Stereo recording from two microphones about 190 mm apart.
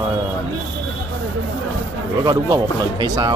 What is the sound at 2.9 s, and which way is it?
Speech, 20° right (ahead or behind).